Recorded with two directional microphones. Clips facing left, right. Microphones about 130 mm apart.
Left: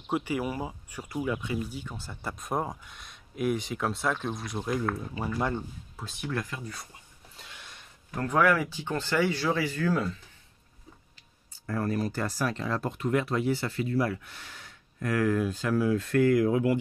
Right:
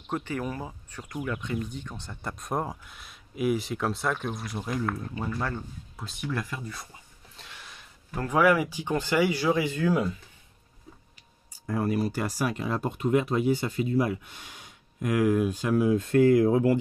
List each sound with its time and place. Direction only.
0.1 s speech: 10° left (ahead or behind)
5.9 s speech: centre (ahead or behind)
8.1 s speech: 5° right (ahead or behind)
11.5 s speech: 15° right (ahead or behind); by 16.7 s 30° right (ahead or behind)